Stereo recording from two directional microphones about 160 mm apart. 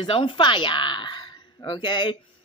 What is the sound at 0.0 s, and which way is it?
Speech, 30° left (ahead or behind).